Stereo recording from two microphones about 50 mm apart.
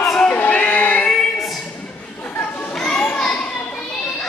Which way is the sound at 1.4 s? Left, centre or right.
Centre.